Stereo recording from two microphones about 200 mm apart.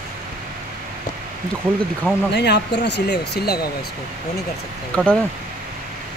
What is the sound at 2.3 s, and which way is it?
Speech, 60° left (ahead or behind).